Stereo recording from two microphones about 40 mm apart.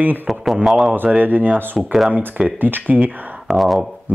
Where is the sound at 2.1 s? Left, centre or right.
Right.